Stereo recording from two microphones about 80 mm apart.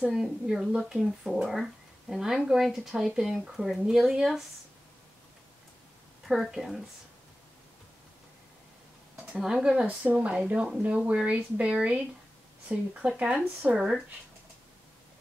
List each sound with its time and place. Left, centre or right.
0.0 s speech: centre
6.2 s speech: centre
9.1 s speech: centre